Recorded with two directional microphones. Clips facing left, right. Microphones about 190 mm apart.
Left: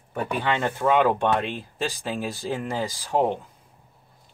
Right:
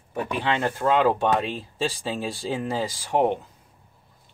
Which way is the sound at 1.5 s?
30° right (ahead or behind).